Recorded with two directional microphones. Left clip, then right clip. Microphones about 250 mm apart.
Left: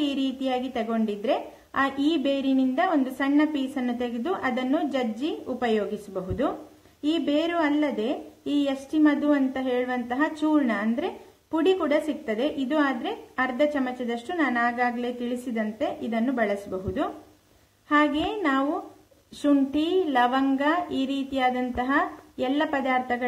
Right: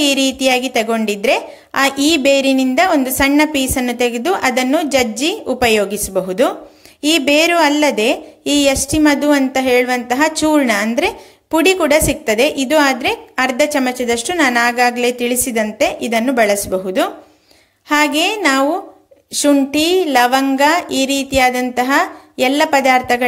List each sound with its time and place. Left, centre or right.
0.0 s a woman's voice: right